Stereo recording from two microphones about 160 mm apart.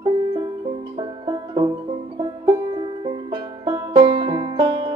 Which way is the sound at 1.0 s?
25° right (ahead or behind).